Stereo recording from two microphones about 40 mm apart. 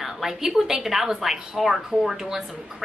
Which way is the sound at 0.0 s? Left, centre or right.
Centre.